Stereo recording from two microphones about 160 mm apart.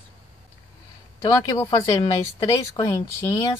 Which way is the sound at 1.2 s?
25° left (ahead or behind).